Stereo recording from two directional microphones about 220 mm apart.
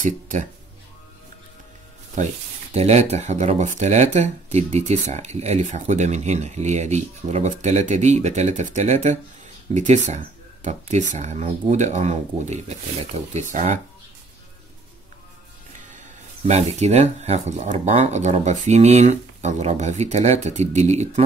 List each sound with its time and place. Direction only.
0.0 s speech: 35° right (ahead or behind)
2.7 s speech: 30° right (ahead or behind)
16.4 s speech: 30° right (ahead or behind)